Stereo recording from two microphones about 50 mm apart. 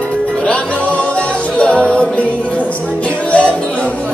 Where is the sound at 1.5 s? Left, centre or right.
Left.